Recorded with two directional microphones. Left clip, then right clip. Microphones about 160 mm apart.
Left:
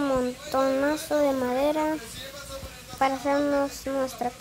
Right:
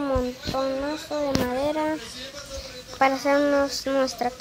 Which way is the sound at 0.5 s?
25° left (ahead or behind).